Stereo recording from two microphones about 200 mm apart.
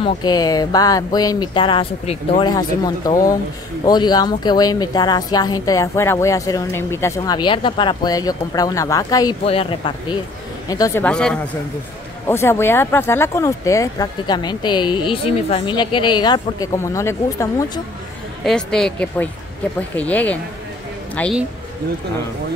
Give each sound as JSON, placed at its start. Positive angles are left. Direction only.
{"t": 0.0, "sound": "speech", "side_deg": 20}
{"t": 11.1, "sound": "speech", "side_deg": 5}
{"t": 18.4, "sound": "speech", "side_deg": 5}